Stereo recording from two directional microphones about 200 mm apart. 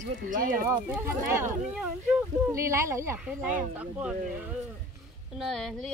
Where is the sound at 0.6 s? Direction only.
10° right (ahead or behind).